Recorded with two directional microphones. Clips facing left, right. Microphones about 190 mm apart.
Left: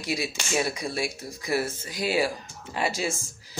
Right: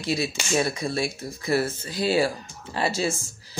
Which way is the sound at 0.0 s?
15° left (ahead or behind).